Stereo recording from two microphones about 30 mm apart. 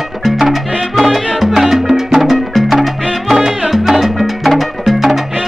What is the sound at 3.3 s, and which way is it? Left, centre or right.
Music, centre.